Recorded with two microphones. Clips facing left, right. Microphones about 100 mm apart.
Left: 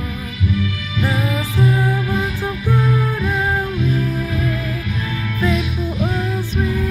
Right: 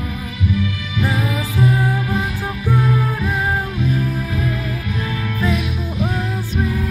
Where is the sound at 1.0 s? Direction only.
10° right (ahead or behind).